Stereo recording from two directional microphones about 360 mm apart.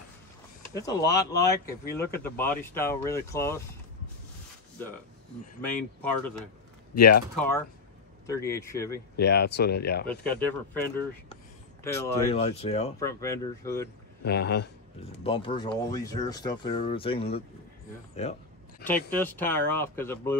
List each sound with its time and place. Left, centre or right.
0.6 s speech: centre
5.6 s speech: centre
8.3 s speech: centre
9.2 s speech: left
10.0 s speech: centre
14.2 s speech: left
15.2 s speech: centre
18.9 s speech: centre